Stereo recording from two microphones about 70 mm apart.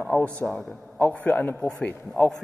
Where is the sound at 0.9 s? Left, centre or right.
Left.